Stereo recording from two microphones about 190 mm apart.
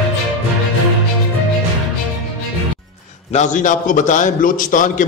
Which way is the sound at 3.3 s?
40° left (ahead or behind).